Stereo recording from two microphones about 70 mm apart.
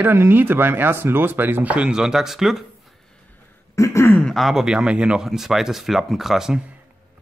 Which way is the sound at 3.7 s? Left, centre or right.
Left.